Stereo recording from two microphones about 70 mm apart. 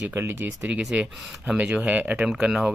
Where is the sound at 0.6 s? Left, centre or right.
Centre.